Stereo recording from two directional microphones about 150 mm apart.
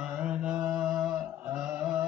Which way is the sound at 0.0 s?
5° right (ahead or behind).